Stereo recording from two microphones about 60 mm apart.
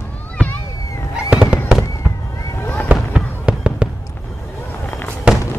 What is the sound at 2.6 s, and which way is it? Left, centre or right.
Fireworks, left.